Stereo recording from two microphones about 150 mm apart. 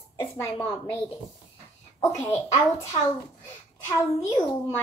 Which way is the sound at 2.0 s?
15° left (ahead or behind).